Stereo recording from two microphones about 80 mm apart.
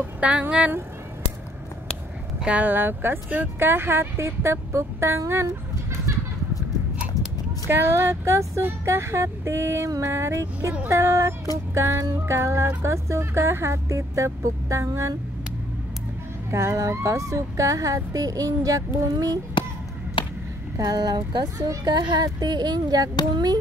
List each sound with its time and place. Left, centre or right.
0.0 s speech: centre
2.4 s speech: centre; by 6.1 s right
7.6 s speech: right
16.4 s speech: right
20.2 s a sound: left
20.7 s speech: right